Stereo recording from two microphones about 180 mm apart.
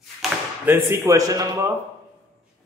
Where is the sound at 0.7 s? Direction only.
10° right (ahead or behind).